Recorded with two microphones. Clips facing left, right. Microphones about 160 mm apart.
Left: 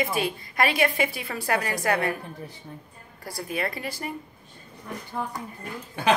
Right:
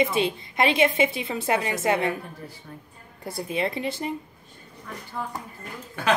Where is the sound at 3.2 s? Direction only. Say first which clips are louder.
Right 3 dB; 25° right (ahead or behind).